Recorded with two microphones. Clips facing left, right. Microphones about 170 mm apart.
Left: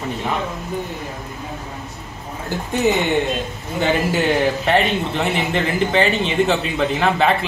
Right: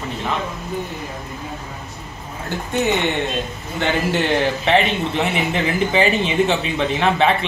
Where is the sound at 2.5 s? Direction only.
Centre (ahead or behind).